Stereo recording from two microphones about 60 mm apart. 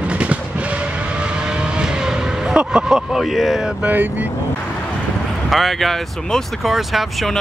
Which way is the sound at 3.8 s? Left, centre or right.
Right.